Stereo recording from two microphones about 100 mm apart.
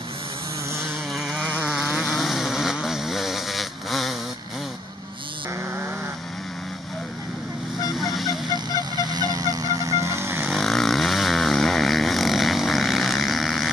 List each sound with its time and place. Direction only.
1.4 s vehicle: 10° right (ahead or behind)
8.0 s vehicle: centre (ahead or behind)
8.9 s vehicle: 45° right (ahead or behind); by 10.5 s 25° right (ahead or behind)
10.5 s vehicle: 5° left (ahead or behind)